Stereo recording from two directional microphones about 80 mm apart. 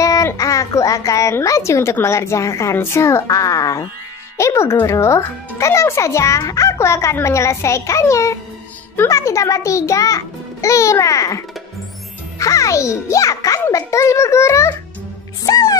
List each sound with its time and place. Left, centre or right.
0.0 s a woman's voice: left
15.4 s music: left